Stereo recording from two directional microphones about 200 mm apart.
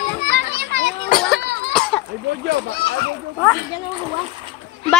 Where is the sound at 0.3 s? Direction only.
55° right (ahead or behind).